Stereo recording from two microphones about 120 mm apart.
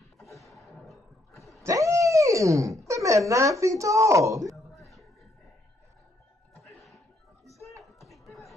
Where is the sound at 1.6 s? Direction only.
25° right (ahead or behind).